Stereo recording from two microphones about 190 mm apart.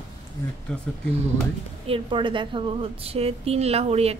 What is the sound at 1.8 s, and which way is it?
A woman's voice, 25° right (ahead or behind).